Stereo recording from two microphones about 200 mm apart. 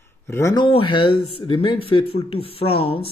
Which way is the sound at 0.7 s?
25° left (ahead or behind).